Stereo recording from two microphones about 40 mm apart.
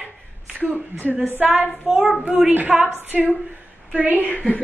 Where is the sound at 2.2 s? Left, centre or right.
Right.